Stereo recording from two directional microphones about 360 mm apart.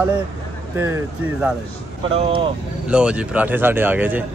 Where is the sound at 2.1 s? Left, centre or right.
Centre.